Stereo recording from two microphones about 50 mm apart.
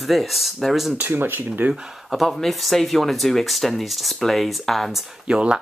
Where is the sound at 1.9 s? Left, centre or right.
Centre.